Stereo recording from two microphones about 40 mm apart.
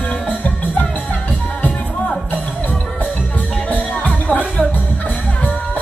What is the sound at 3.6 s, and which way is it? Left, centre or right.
Music, left.